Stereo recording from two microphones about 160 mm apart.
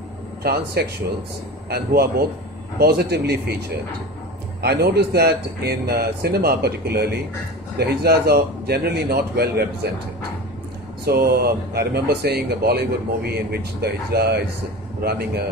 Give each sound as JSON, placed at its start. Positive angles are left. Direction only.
{"t": 0.4, "sound": "speech", "side_deg": -80}
{"t": 4.6, "sound": "speech", "side_deg": -85}
{"t": 11.1, "sound": "speech", "side_deg": -80}
{"t": 15.0, "sound": "speech", "side_deg": -75}